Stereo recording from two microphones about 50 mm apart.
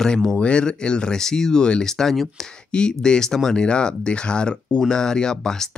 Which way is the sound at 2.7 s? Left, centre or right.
Centre.